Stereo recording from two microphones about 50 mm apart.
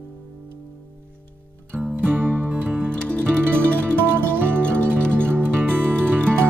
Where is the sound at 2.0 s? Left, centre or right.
Right.